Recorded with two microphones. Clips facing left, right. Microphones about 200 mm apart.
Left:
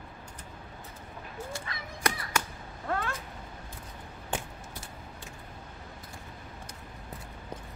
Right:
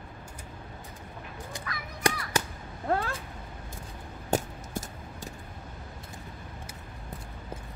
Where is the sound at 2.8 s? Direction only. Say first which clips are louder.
Right 4 dB; 35° right (ahead or behind).